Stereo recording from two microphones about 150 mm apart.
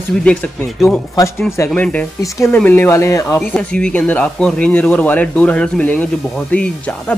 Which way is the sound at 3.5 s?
5° left (ahead or behind).